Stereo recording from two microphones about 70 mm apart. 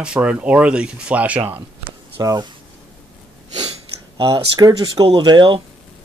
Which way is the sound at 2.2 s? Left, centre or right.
Right.